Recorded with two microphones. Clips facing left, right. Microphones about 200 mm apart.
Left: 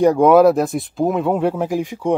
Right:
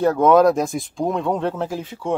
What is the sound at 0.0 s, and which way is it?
Speech, 10° left (ahead or behind).